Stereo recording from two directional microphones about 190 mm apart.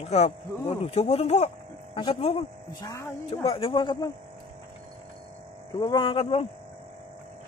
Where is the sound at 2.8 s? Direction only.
15° left (ahead or behind).